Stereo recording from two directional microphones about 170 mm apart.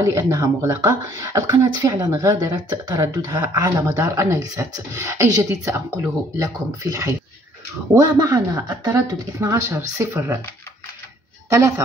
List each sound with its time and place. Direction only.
0.0 s speech: 20° right (ahead or behind)
11.5 s speech: 15° right (ahead or behind)